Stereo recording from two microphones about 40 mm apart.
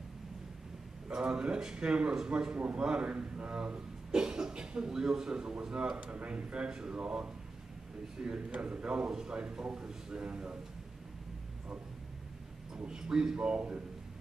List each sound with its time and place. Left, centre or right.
1.1 s a man's voice: right
2.5 s a man's voice: right
4.1 s cough: centre
4.8 s a man's voice: centre; by 10.6 s right
12.7 s a man's voice: right
13.5 s a man's voice: right